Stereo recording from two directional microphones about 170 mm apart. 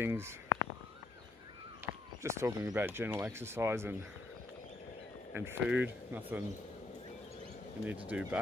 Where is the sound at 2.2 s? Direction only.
15° right (ahead or behind).